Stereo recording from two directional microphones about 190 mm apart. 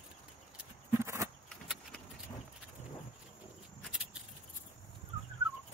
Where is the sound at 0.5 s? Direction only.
15° right (ahead or behind).